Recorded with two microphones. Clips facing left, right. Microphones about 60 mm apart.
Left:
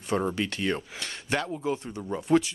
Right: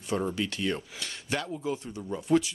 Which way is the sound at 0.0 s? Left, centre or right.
Left.